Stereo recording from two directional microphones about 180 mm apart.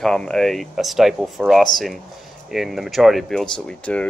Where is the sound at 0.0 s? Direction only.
5° left (ahead or behind).